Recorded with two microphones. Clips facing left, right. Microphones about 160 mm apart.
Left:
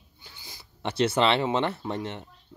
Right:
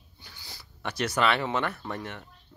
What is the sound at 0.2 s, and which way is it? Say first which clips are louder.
Speech: even; 20° left (ahead or behind).